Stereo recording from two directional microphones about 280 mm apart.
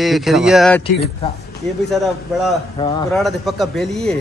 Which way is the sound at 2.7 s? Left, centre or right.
Centre.